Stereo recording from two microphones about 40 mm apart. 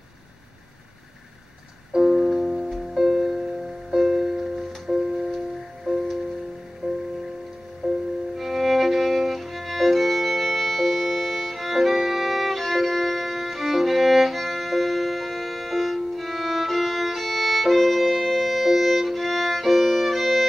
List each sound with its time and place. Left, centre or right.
1.9 s music: centre
6.8 s music: right
7.8 s music: centre
8.4 s violin: centre